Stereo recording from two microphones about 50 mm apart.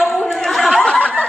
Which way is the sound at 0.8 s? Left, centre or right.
Left.